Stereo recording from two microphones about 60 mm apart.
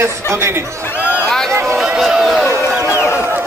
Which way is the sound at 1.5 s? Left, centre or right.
Right.